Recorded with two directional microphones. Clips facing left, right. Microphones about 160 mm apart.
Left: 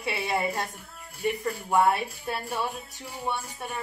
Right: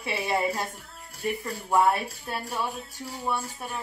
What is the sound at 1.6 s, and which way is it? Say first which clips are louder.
A woman's voice: right 1 dB; centre (ahead or behind).